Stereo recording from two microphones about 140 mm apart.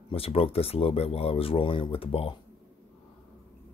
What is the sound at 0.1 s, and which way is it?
Speech, 45° left (ahead or behind).